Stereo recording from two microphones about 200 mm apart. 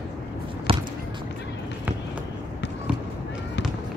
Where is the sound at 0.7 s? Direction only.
30° right (ahead or behind).